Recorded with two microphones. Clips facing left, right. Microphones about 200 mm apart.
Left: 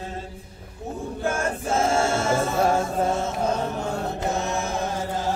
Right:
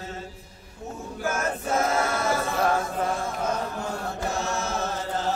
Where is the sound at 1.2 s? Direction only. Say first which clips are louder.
Left 1 dB; 30° left (ahead or behind); by 5.2 s 15° left (ahead or behind).